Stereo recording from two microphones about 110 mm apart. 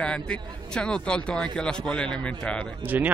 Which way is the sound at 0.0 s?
10° left (ahead or behind).